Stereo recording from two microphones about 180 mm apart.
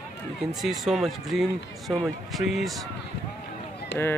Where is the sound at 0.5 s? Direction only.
Centre (ahead or behind).